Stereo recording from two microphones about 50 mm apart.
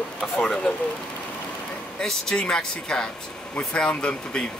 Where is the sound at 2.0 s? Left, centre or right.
Centre.